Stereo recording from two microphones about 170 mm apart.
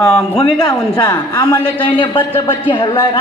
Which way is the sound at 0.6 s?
25° left (ahead or behind).